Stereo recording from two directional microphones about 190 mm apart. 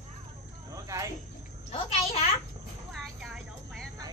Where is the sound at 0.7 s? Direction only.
15° right (ahead or behind).